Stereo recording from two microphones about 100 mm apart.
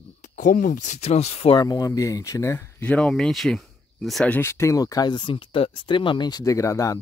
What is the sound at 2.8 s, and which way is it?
Speech, 10° left (ahead or behind).